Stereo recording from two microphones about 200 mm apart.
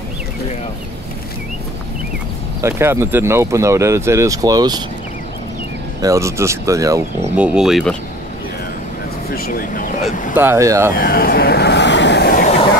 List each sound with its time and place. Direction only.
2.6 s speech: 15° right (ahead or behind)
5.9 s speech: 15° right (ahead or behind)
7.3 s speech: 5° right (ahead or behind)
9.3 s speech: 45° left (ahead or behind)
10.3 s speech: 10° right (ahead or behind)
11.0 s vehicle: 45° left (ahead or behind)
12.4 s vehicle: 30° left (ahead or behind)